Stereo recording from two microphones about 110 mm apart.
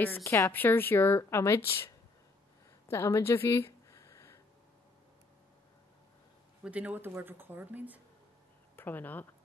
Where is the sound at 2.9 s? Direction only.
25° left (ahead or behind).